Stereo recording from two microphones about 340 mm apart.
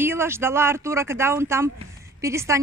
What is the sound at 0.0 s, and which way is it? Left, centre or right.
A woman's voice, centre.